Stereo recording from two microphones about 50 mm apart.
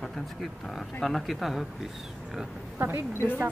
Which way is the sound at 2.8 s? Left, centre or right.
Right.